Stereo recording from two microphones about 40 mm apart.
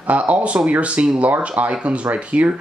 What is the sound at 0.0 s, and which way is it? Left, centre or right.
Speech, right.